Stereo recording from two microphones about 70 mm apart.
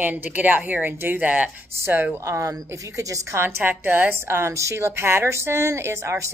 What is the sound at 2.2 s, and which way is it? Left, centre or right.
A woman's voice, right.